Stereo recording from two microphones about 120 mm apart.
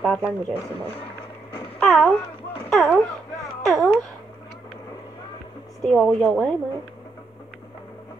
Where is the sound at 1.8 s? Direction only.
Centre (ahead or behind).